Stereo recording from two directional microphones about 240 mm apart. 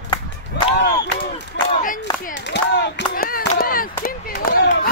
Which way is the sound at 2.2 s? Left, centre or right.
Left.